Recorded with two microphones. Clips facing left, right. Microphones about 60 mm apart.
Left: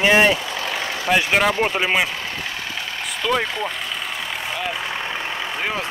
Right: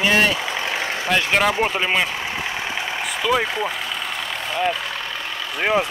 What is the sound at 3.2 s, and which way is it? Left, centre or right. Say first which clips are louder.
Speech: right 1 dB; centre.